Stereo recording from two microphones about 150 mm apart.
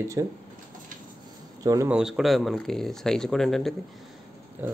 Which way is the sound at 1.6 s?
20° right (ahead or behind).